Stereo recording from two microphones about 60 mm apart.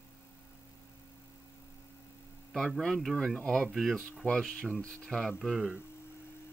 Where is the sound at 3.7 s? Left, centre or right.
Centre.